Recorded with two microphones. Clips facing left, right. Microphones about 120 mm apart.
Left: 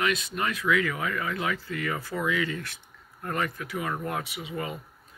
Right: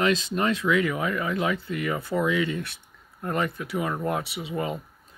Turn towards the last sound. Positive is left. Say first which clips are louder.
# right 4 dB
turn(degrees=-25)  # may be behind; listen again after turning